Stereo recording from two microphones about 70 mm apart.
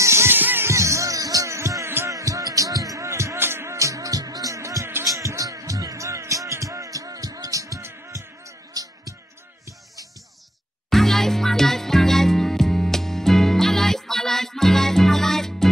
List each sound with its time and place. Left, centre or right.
0.0 s music: right
0.7 s music: right
2.0 s music: right
3.7 s music: right
10.9 s music: centre